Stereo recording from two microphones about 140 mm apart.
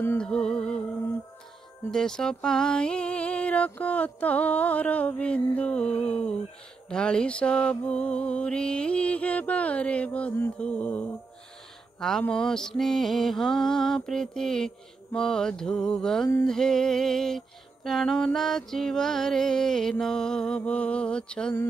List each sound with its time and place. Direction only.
0.0 s music: 15° left (ahead or behind)
0.3 s music: 5° left (ahead or behind)
1.9 s music: 5° left (ahead or behind)